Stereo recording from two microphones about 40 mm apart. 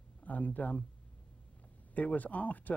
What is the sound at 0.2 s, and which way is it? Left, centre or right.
Speech, left.